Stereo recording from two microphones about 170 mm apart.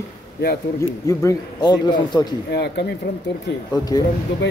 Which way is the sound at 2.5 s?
75° left (ahead or behind).